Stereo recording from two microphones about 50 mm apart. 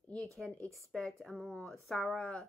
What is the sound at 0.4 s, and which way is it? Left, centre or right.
A woman's voice, centre.